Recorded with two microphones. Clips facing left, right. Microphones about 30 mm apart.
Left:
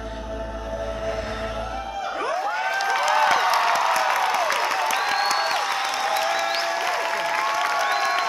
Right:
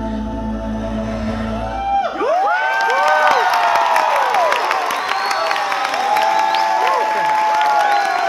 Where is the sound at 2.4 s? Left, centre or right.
Right.